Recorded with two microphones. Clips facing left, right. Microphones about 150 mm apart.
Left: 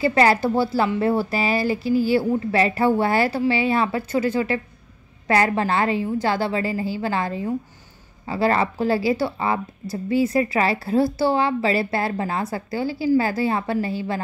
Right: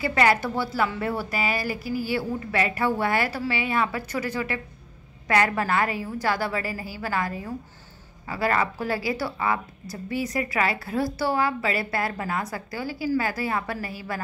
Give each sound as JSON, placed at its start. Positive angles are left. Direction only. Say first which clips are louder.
{"t": 0.0, "sound": "a woman's voice", "louder": "left 4 dB", "side_deg": 30}